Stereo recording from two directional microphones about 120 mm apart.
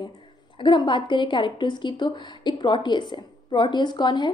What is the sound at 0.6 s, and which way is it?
A woman's voice, 40° left (ahead or behind).